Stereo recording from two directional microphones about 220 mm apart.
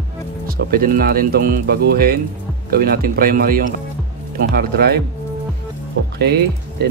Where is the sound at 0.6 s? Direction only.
45° right (ahead or behind).